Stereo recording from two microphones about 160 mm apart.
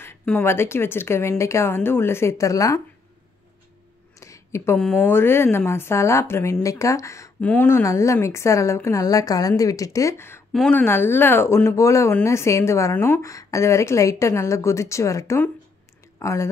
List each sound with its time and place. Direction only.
0.0 s speech: 10° left (ahead or behind)
4.2 s a sound: 20° left (ahead or behind)
4.7 s speech: 10° left (ahead or behind)
10.5 s speech: 5° left (ahead or behind)
10.8 s speech: 15° left (ahead or behind)